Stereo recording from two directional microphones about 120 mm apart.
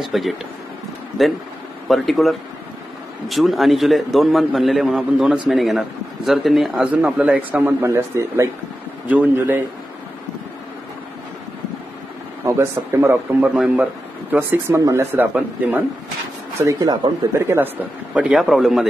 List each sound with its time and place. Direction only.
0.0 s a man's voice: centre (ahead or behind)
6.9 s a man's voice: 10° right (ahead or behind)
12.4 s a man's voice: 20° right (ahead or behind)
14.8 s a man's voice: 30° right (ahead or behind)
15.1 s a man's voice: 15° right (ahead or behind)
16.6 s a man's voice: 30° right (ahead or behind)
18.1 s a man's voice: 5° right (ahead or behind)